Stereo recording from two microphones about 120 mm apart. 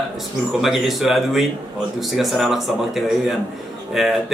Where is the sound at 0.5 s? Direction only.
5° right (ahead or behind).